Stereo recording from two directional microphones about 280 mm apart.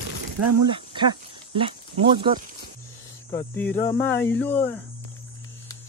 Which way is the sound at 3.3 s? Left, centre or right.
Centre.